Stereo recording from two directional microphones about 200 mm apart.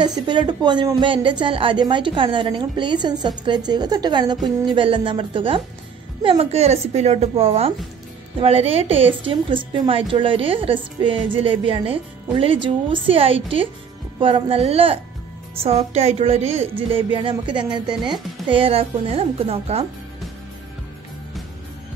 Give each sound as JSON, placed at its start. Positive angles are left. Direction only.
{"t": 0.0, "sound": "a woman's voice", "side_deg": -20}